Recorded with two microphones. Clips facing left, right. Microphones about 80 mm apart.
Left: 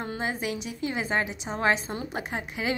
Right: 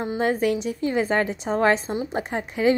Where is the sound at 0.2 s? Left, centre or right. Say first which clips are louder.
Right 11 dB; right.